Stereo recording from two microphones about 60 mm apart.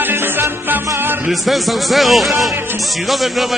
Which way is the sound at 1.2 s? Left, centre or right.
Centre.